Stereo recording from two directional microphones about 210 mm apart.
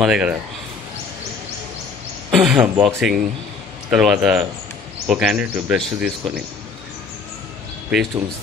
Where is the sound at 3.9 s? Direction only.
5° right (ahead or behind).